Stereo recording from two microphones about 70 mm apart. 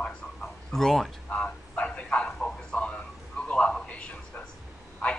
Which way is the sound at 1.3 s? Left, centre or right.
Centre.